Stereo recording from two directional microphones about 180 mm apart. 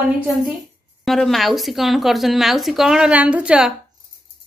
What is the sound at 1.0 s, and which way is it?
Speech, centre (ahead or behind).